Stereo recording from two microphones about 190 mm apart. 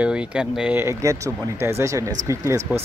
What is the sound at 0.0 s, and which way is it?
Speech, 5° right (ahead or behind).